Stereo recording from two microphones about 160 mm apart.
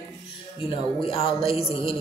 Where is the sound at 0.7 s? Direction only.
35° left (ahead or behind).